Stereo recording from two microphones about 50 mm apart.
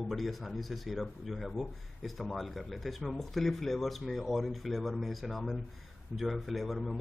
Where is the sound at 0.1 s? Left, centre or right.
Centre.